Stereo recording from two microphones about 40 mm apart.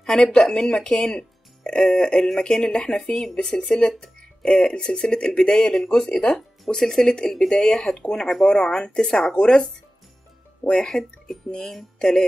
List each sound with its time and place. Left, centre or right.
0.0 s speech: left
1.1 s speech: left
3.9 s music: centre
4.5 s speech: left
10.7 s speech: centre